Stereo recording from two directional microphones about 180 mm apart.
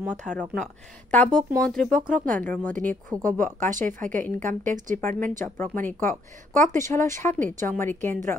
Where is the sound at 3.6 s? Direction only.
45° right (ahead or behind).